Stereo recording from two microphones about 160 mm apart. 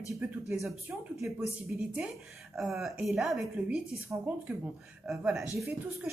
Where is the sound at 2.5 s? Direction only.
Centre (ahead or behind).